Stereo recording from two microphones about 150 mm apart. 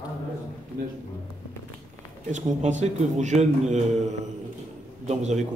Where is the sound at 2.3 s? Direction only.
50° right (ahead or behind).